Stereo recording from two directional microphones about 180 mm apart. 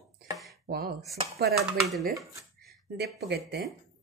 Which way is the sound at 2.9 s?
65° right (ahead or behind).